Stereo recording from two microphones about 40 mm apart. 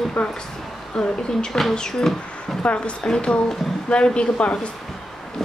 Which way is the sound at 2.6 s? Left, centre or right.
Left.